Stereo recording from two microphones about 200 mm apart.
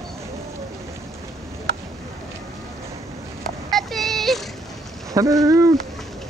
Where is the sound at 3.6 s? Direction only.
Centre (ahead or behind).